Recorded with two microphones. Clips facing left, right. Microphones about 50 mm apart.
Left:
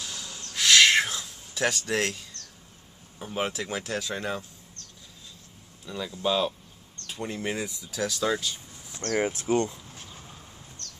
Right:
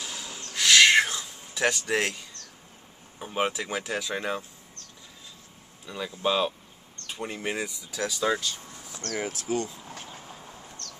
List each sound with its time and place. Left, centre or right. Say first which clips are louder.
0.0 s owl: right 1 dB; centre
0.6 s owl: right 1 dB; centre
1.2 s speech: right 1 dB; centre
5.9 s speech: even; centre
9.0 s speech: left 5 dB; left